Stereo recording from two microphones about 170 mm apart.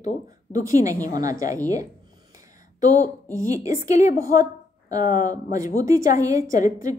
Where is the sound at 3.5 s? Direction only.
20° right (ahead or behind).